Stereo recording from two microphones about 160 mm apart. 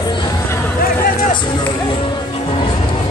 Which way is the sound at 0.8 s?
60° left (ahead or behind).